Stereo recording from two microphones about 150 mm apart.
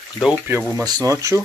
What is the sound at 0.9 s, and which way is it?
Speech, 25° right (ahead or behind).